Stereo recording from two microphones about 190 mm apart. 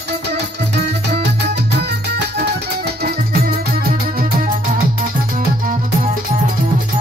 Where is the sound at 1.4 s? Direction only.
60° right (ahead or behind).